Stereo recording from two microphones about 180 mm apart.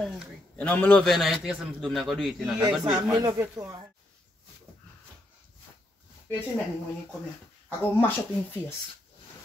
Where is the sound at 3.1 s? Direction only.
20° right (ahead or behind).